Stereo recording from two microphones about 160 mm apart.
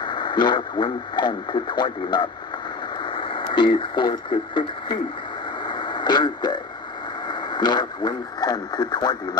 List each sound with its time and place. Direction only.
0.0 s speech: 30° left (ahead or behind)
5.6 s radio: 30° left (ahead or behind)
7.2 s speech: 25° left (ahead or behind)